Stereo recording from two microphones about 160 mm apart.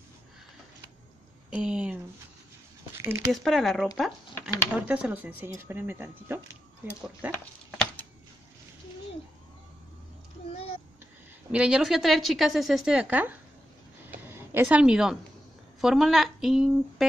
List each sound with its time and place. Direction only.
1.5 s speech: 5° right (ahead or behind)
3.0 s speech: 15° right (ahead or behind)
3.3 s speech: centre (ahead or behind)
7.2 s a sound: 10° left (ahead or behind)
11.5 s speech: 5° right (ahead or behind)
14.0 s a sound: 10° right (ahead or behind)
15.8 s a woman's voice: centre (ahead or behind)